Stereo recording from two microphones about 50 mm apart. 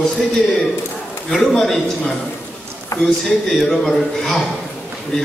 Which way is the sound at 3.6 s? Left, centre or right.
Centre.